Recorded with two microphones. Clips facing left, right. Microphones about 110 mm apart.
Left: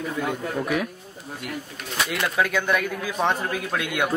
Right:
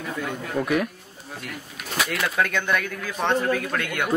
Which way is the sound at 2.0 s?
Centre (ahead or behind).